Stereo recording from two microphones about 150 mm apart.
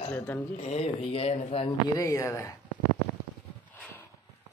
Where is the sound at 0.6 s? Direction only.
45° left (ahead or behind).